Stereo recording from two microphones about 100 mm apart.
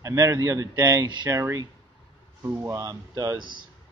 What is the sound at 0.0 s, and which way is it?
Speech, 30° right (ahead or behind).